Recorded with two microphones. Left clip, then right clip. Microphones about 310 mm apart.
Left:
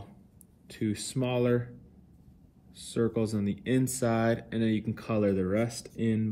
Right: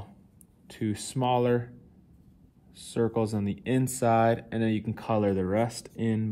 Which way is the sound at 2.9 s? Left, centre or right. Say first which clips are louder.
Right 2 dB; right.